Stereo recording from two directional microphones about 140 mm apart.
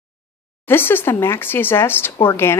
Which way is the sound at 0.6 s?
15° left (ahead or behind).